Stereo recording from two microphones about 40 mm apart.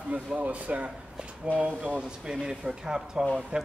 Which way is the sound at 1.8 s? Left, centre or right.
Right.